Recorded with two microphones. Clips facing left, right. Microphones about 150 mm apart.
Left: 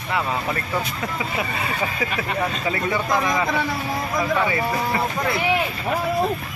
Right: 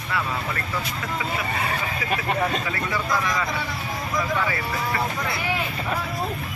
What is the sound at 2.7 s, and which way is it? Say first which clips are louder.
Speech: left 4 dB; 20° left (ahead or behind).